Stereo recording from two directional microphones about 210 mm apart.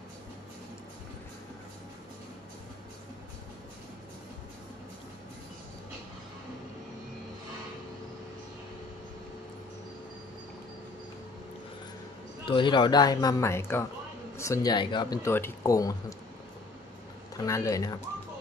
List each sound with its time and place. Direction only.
12.4 s speech: 25° left (ahead or behind)
17.5 s speech: 15° left (ahead or behind)